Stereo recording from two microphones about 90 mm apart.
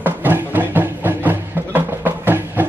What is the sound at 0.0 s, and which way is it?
Music, 20° right (ahead or behind).